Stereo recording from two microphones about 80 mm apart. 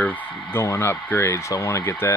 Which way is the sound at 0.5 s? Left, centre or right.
Left.